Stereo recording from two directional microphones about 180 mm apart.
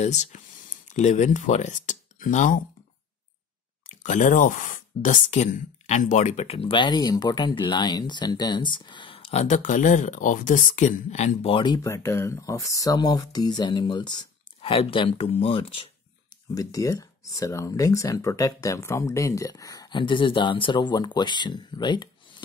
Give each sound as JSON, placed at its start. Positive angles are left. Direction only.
{"t": 0.0, "sound": "speech", "side_deg": 40}
{"t": 4.0, "sound": "speech", "side_deg": 45}
{"t": 16.5, "sound": "speech", "side_deg": 20}